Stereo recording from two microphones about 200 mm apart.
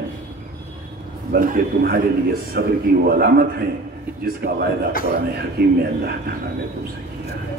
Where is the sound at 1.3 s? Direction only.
45° right (ahead or behind).